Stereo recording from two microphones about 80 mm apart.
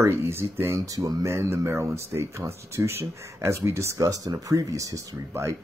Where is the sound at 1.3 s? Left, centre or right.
Right.